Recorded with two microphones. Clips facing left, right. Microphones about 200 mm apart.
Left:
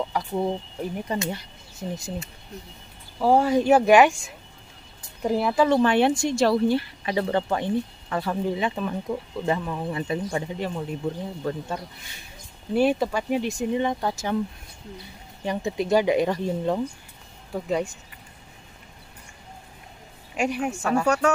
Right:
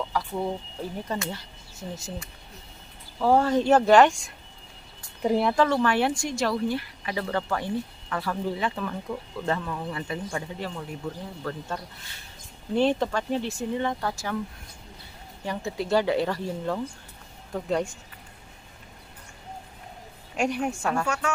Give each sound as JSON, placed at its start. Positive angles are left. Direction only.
{"t": 0.1, "sound": "a sound", "side_deg": 20}
{"t": 1.0, "sound": "speech", "side_deg": 15}
{"t": 5.2, "sound": "speech", "side_deg": 0}
{"t": 5.7, "sound": "speech", "side_deg": 20}
{"t": 15.4, "sound": "speech", "side_deg": 20}
{"t": 17.5, "sound": "speech", "side_deg": 5}
{"t": 20.3, "sound": "speech", "side_deg": 5}